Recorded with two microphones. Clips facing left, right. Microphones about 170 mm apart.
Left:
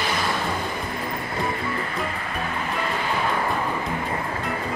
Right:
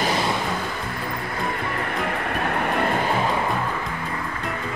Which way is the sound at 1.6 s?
65° right (ahead or behind).